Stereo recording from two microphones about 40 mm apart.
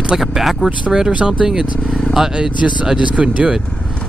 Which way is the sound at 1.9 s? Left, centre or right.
Centre.